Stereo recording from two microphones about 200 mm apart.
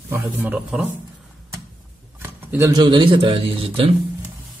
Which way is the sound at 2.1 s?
10° right (ahead or behind).